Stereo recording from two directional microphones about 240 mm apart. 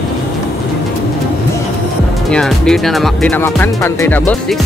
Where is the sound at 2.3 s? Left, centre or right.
Centre.